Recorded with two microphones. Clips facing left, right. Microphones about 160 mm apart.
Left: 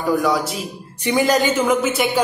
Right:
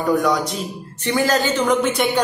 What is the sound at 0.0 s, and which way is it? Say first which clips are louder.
Speech: even; centre (ahead or behind).